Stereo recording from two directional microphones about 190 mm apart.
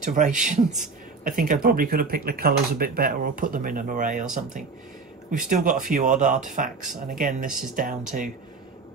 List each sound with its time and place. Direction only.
0.0 s speech: 40° right (ahead or behind)